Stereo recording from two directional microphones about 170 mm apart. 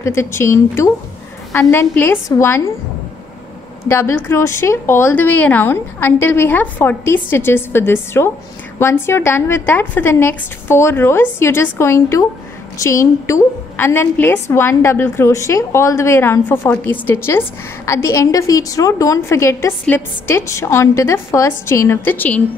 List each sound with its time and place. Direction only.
0.0 s a woman's voice: 15° left (ahead or behind)
3.9 s a woman's voice: 15° left (ahead or behind)